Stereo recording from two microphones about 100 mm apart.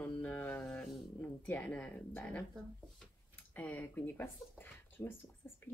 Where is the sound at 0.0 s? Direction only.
15° left (ahead or behind).